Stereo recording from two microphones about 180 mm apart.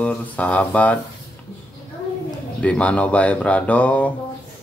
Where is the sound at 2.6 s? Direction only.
5° left (ahead or behind).